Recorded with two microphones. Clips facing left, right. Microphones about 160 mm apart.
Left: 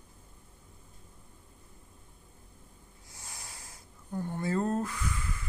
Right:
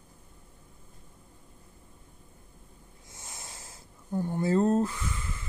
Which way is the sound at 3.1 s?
20° right (ahead or behind).